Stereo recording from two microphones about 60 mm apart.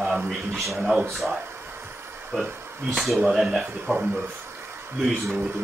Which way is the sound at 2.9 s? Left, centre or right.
Centre.